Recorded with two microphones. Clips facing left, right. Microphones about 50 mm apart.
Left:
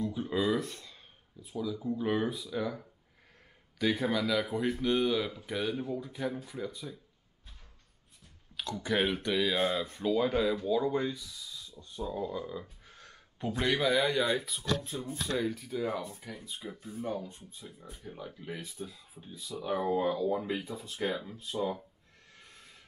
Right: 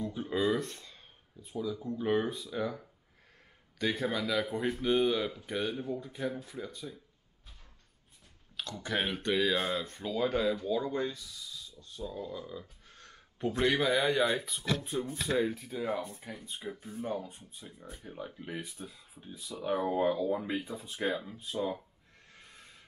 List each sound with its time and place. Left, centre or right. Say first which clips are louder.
0.0 s a man's voice: even; centre
8.8 s speech: left 2 dB; centre
11.8 s speech: left 5 dB; centre
13.4 s speech: right 1 dB; centre
16.3 s speech: even; right
16.7 s speech: left 1 dB; centre